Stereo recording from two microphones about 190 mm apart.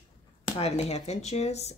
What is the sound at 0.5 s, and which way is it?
Speech, 35° left (ahead or behind).